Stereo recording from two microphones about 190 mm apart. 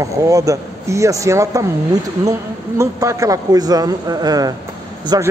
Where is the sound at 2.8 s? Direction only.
15° right (ahead or behind).